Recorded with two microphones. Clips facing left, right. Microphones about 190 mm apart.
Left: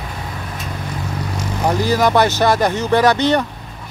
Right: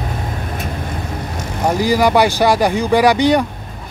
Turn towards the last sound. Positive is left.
turn(degrees=-10)  # may be behind; listen again after turning